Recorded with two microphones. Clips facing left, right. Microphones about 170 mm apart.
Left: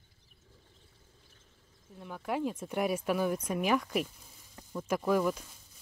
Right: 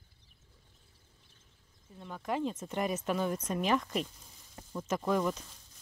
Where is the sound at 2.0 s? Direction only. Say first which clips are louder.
Even; 5° left (ahead or behind).